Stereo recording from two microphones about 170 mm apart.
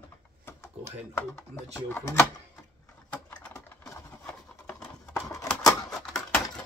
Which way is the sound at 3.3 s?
10° left (ahead or behind).